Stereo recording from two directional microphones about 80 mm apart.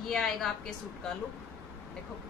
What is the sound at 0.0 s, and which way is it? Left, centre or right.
A woman's voice, centre.